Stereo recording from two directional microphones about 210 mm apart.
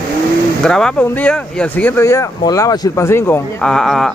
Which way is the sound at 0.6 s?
5° left (ahead or behind).